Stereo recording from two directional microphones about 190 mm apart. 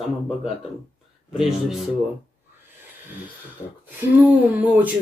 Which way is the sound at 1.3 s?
Centre (ahead or behind).